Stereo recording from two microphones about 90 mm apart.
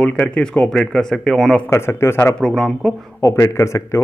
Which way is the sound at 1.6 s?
30° left (ahead or behind).